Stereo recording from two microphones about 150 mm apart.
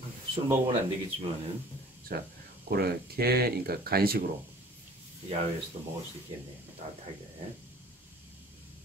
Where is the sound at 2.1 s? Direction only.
90° right.